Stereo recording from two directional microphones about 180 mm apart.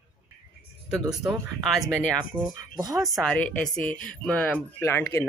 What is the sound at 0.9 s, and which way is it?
Speech, 5° right (ahead or behind).